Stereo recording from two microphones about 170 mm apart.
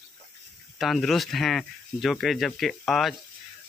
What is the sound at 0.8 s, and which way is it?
Speech, centre (ahead or behind).